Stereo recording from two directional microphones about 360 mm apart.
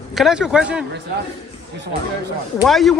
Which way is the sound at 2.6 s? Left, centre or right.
Centre.